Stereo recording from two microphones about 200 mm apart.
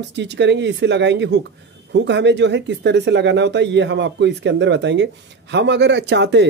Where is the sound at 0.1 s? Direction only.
60° right (ahead or behind).